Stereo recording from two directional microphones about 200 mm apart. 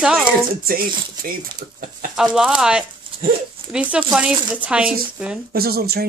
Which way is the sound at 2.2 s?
5° right (ahead or behind).